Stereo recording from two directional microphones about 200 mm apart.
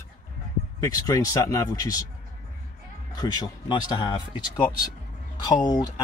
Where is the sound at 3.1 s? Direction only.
20° left (ahead or behind).